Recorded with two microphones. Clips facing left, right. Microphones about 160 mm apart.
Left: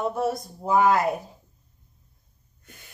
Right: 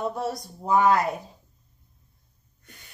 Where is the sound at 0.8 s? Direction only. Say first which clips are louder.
Even; 50° left (ahead or behind).